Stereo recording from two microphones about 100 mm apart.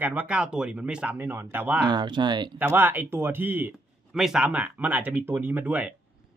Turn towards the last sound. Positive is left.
turn(degrees=-15)  # may be behind; listen again after turning